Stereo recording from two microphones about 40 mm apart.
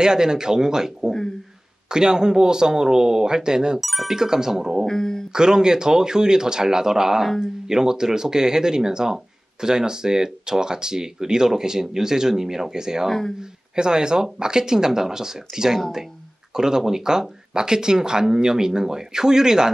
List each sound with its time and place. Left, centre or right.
0.0 s speech: centre
3.8 s speech: centre
4.1 s speech: centre
4.8 s speech: centre
5.3 s speech: centre